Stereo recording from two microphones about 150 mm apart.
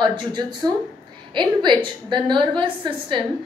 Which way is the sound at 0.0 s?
30° right (ahead or behind).